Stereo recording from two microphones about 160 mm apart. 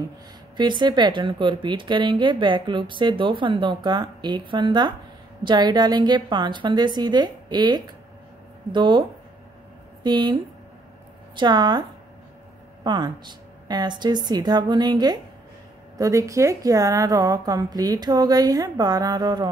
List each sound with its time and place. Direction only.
0.6 s a woman's voice: 30° right (ahead or behind)
10.0 s a woman's voice: 30° right (ahead or behind)
12.8 s a woman's voice: 25° right (ahead or behind)